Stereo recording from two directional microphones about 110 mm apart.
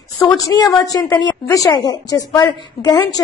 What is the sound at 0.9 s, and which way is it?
A woman's voice, 25° left (ahead or behind).